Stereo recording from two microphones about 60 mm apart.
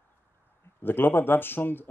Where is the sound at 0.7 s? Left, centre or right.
Left.